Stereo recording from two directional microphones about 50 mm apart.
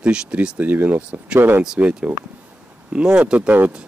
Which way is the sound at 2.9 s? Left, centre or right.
Right.